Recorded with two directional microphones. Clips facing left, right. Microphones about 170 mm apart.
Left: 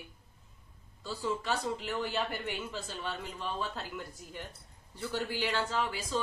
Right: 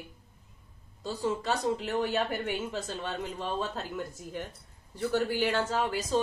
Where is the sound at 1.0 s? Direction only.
40° right (ahead or behind).